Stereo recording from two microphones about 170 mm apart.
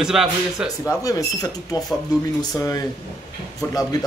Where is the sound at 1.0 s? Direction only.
20° left (ahead or behind).